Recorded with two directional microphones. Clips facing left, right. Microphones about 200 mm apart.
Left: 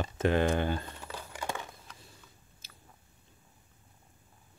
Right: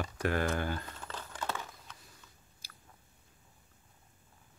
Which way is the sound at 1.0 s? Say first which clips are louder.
Left 1 dB; 10° left (ahead or behind).